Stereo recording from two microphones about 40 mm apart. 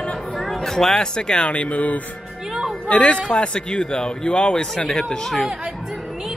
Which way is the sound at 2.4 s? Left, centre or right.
Centre.